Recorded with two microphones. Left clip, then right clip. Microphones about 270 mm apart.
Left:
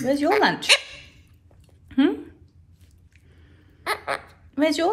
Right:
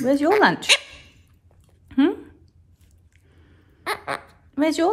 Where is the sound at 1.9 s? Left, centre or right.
Centre.